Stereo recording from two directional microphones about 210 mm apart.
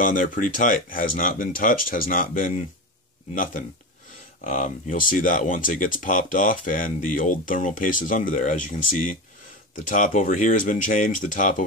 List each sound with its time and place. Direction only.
0.0 s speech: 40° left (ahead or behind)
4.5 s speech: 40° left (ahead or behind)